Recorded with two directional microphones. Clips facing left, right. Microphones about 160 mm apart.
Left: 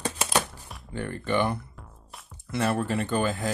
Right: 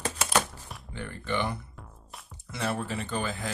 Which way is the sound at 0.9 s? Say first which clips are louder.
Left 5 dB; 50° left (ahead or behind).